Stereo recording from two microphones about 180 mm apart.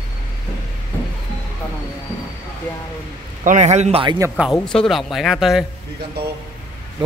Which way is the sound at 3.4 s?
40° right (ahead or behind).